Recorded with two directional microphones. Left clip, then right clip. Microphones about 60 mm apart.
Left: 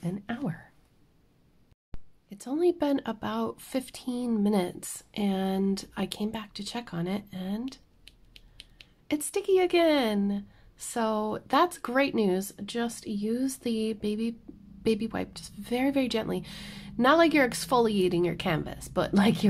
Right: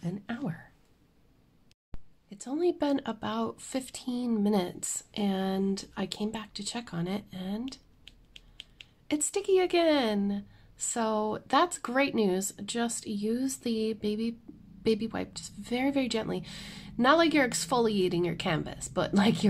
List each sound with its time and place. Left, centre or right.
0.0 s a sound: left
1.9 s a sound: centre
2.2 s speech: left
5.7 s speech: left
9.0 s speech: left
12.4 s speech: centre; by 19.4 s left